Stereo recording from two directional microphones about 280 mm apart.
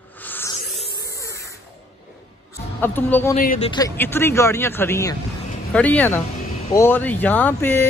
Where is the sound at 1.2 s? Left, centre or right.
Centre.